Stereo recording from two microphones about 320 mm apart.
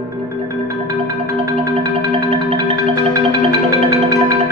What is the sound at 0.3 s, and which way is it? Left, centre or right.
Music, centre.